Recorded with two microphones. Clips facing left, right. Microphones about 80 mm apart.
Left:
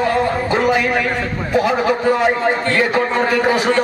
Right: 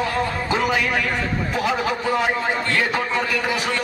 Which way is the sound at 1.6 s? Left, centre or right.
Left.